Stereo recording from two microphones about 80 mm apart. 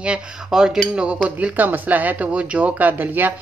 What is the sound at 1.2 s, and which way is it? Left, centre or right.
Speech, centre.